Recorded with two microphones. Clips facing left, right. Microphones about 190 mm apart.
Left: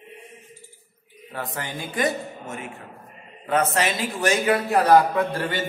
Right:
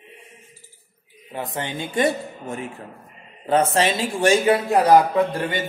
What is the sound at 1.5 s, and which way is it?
A man's voice, 25° right (ahead or behind).